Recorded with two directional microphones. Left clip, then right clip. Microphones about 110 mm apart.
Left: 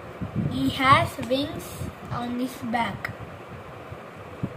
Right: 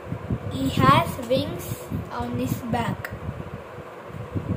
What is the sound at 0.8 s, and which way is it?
Speech, 15° right (ahead or behind).